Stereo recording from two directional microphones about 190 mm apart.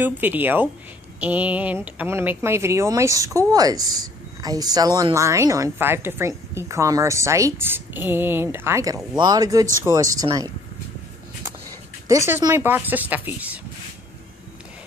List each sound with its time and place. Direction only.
0.0 s speech: 10° right (ahead or behind)
12.1 s speech: 15° right (ahead or behind)